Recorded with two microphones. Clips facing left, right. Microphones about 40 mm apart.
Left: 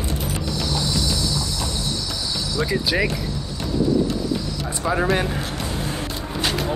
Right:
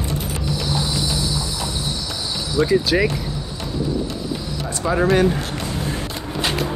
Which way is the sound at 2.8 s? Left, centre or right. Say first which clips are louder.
Right 3 dB; centre.